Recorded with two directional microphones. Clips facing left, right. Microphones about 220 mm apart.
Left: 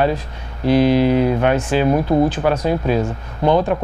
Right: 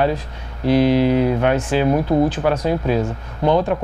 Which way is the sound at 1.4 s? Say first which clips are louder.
Left 1 dB; 15° left (ahead or behind).